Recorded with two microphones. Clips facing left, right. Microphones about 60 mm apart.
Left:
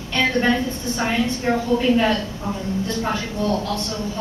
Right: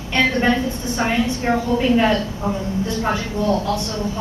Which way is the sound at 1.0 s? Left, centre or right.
Centre.